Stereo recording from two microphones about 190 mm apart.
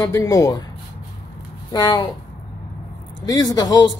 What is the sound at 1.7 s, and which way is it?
Speech, 15° left (ahead or behind).